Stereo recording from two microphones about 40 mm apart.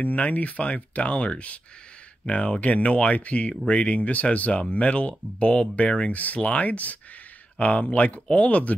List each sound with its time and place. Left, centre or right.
0.0 s speech: left